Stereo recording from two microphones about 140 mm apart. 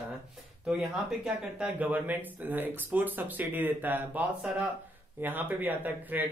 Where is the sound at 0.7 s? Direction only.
5° right (ahead or behind).